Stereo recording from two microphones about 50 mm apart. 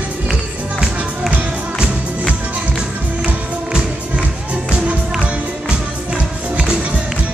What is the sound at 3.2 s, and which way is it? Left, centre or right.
Music, centre.